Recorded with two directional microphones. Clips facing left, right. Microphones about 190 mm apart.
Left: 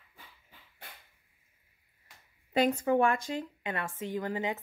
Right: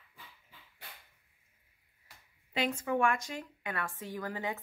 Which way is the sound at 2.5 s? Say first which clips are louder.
Left 6 dB; 40° left (ahead or behind).